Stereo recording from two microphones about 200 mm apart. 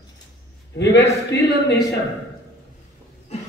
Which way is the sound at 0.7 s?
60° left (ahead or behind).